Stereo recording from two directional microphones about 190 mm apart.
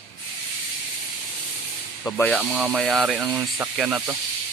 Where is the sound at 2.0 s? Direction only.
15° left (ahead or behind).